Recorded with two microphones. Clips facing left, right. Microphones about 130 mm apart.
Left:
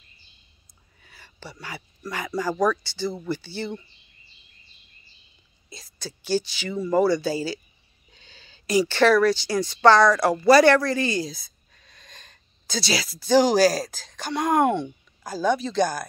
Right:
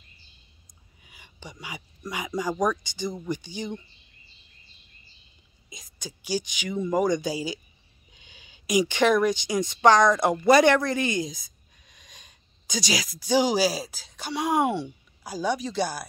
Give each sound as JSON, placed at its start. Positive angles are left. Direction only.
{"t": 0.7, "sound": "speech", "side_deg": -15}
{"t": 5.7, "sound": "speech", "side_deg": -15}